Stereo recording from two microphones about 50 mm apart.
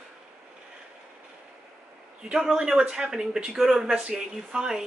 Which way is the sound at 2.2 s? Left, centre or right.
Centre.